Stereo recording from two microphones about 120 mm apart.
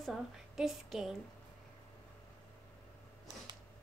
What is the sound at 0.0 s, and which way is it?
A woman's voice, centre (ahead or behind).